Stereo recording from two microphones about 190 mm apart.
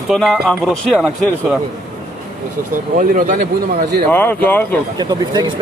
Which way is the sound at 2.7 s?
45° right (ahead or behind).